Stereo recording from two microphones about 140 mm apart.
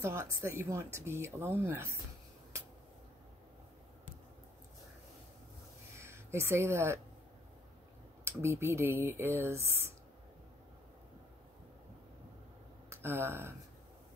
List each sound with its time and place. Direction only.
0.0 s speech: 20° right (ahead or behind)
5.9 s speech: 20° right (ahead or behind)
8.2 s speech: 20° right (ahead or behind)
12.9 s speech: 15° right (ahead or behind)